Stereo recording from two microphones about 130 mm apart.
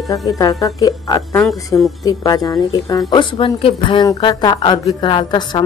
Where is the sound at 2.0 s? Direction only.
30° left (ahead or behind).